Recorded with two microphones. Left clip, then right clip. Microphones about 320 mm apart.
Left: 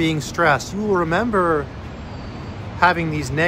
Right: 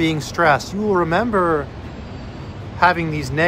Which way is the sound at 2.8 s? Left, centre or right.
Centre.